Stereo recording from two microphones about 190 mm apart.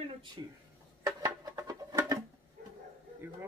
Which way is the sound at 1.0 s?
20° right (ahead or behind).